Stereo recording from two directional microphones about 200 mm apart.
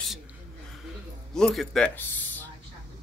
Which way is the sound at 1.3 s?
5° left (ahead or behind).